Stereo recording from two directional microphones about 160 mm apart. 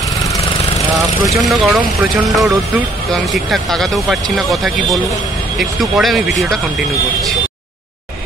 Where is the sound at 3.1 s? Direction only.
Centre (ahead or behind).